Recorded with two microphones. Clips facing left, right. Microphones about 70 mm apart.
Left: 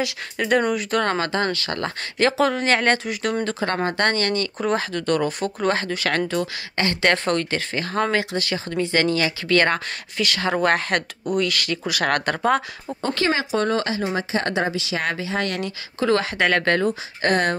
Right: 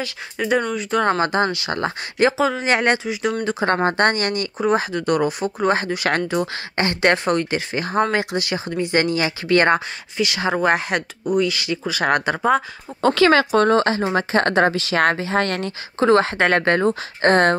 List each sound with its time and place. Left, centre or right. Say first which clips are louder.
0.4 s speech: even; centre
1.0 s speech: right 4 dB; right
2.3 s speech: even; centre
2.6 s speech: right 1 dB; centre
3.1 s speech: right 2 dB; centre
3.6 s speech: right 5 dB; right
10.1 s speech: right 2 dB; centre
13.0 s speech: right 8 dB; right